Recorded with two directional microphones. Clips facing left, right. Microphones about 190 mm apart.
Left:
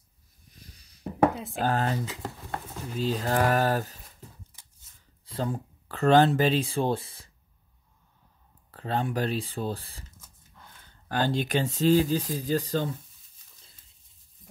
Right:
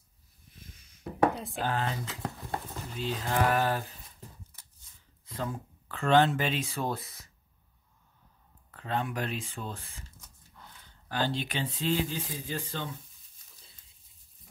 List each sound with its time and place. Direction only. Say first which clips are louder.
0.6 s a sound: even; 35° left (ahead or behind)
1.3 s speech: left 2 dB; centre (ahead or behind)
1.6 s speech: left 5 dB; 45° left (ahead or behind)
2.0 s speech: left 1 dB; centre (ahead or behind)
3.0 s speech: left 4 dB; 40° left (ahead or behind)
5.2 s speech: left 5 dB; 30° left (ahead or behind)
8.7 s speech: left 4 dB; 35° left (ahead or behind)
11.1 s speech: left 5 dB; 50° left (ahead or behind)